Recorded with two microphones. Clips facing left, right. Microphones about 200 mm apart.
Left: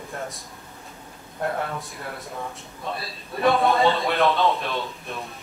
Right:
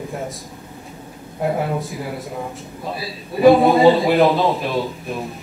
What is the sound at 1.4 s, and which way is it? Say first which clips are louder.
A man's voice: right 7 dB; 10° right (ahead or behind).